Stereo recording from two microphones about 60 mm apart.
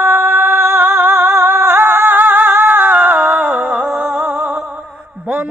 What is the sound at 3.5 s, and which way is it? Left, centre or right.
Music, centre.